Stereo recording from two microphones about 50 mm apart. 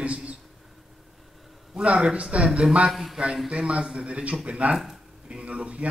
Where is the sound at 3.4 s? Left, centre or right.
Right.